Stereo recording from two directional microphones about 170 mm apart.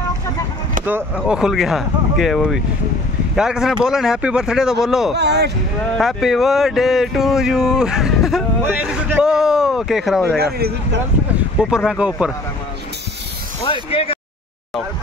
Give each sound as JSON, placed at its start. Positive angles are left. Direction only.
{"t": 0.8, "sound": "speech", "side_deg": -10}
{"t": 5.1, "sound": "speech", "side_deg": -80}
{"t": 5.9, "sound": "speech", "side_deg": 0}
{"t": 10.3, "sound": "speech", "side_deg": -70}
{"t": 11.7, "sound": "speech", "side_deg": -5}
{"t": 13.7, "sound": "speech", "side_deg": 35}